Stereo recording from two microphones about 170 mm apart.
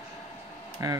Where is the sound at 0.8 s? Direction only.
20° right (ahead or behind).